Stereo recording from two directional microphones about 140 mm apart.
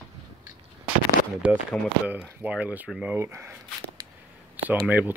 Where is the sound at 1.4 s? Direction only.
10° right (ahead or behind).